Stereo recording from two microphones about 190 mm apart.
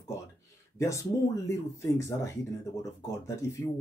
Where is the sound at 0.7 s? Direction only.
15° left (ahead or behind).